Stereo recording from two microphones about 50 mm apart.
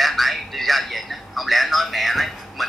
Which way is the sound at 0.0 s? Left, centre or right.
Centre.